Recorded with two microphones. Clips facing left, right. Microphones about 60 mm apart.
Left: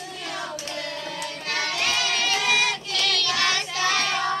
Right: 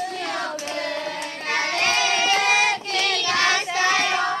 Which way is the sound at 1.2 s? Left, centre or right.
Right.